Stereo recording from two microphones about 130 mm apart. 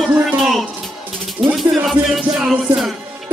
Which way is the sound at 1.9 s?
Centre (ahead or behind).